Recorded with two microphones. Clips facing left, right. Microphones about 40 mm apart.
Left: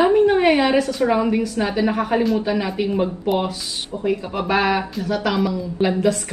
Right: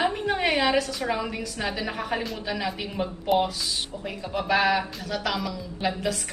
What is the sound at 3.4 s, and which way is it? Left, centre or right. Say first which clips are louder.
Speech: left 3 dB; centre.